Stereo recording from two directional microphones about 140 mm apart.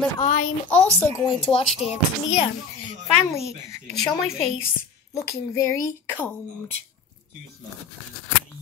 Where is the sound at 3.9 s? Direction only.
Centre (ahead or behind).